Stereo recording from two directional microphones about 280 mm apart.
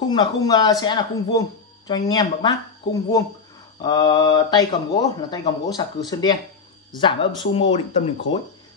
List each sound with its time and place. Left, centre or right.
0.0 s speech: centre